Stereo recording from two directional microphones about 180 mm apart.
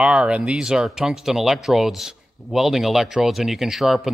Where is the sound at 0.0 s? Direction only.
5° right (ahead or behind).